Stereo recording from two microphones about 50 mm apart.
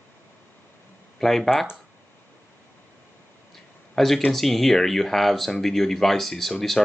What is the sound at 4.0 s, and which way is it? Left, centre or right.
Speech, centre.